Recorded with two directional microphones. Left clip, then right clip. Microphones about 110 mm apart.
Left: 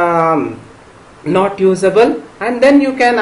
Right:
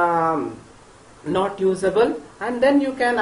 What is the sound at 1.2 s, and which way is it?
A man's voice, 10° left (ahead or behind).